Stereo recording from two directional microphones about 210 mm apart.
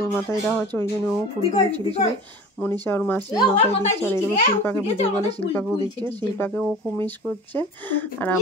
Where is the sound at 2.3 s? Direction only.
10° left (ahead or behind).